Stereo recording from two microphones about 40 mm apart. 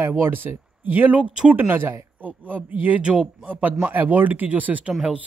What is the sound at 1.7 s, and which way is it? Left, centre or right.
Speech, right.